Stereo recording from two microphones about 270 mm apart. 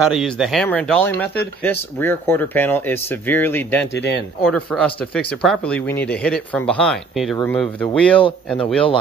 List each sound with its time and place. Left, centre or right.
0.0 s speech: centre
3.9 s speech: left
4.4 s speech: centre